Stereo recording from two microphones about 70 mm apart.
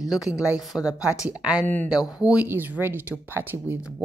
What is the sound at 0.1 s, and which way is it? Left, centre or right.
Speech, centre.